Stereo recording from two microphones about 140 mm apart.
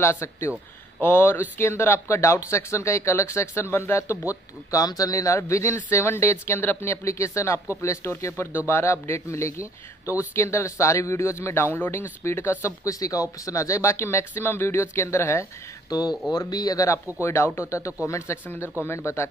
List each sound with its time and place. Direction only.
0.0 s a man's voice: 20° left (ahead or behind)